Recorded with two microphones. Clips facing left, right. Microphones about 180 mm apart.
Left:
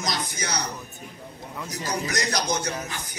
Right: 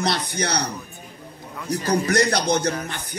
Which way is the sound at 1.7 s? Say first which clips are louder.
Right 9 dB; 60° right (ahead or behind).